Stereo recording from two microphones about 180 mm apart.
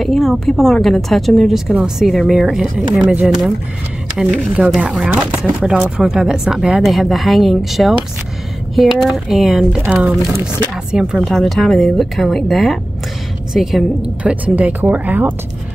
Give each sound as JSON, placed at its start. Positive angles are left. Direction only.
{"t": 0.0, "sound": "a woman's voice", "side_deg": 0}